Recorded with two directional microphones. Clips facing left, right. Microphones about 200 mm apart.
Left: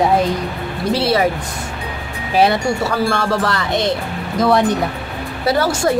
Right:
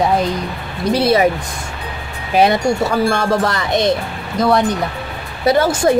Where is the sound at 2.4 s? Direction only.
20° right (ahead or behind).